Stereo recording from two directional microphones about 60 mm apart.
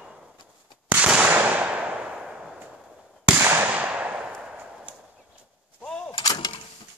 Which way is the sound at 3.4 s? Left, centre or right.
Right.